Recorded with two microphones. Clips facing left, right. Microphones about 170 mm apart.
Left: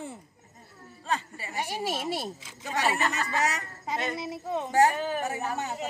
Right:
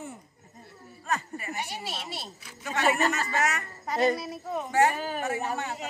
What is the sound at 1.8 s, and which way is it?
Speech, 45° left (ahead or behind).